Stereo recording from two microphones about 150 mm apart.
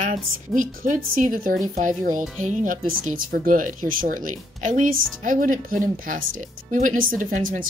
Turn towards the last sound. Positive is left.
turn(degrees=-65)  # may be behind; listen again after turning